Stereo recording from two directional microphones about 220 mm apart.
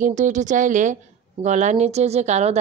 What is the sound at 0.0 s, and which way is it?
A woman's voice, 35° right (ahead or behind).